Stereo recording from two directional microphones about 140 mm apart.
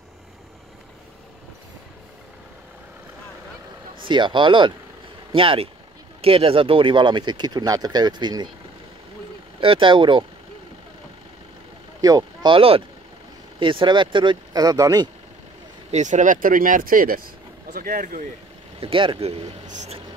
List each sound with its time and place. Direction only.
4.0 s speech: 35° right (ahead or behind)
9.6 s speech: 40° right (ahead or behind)
12.0 s speech: 25° right (ahead or behind)
12.5 s speech: 40° right (ahead or behind); by 15.0 s 25° right (ahead or behind)
15.9 s speech: 60° right (ahead or behind); by 18.2 s 80° right
18.8 s speech: 40° right (ahead or behind)